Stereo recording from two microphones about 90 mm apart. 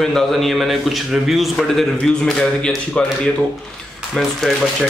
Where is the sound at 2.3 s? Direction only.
10° left (ahead or behind).